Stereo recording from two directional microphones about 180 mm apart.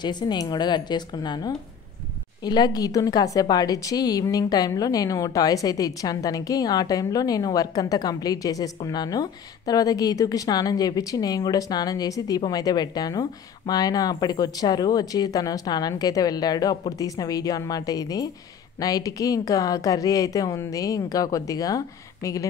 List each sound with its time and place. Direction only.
0.0 s a woman's voice: 25° left (ahead or behind)